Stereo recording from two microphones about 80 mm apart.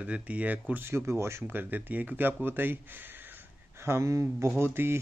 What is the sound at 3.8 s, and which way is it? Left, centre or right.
Speech, right.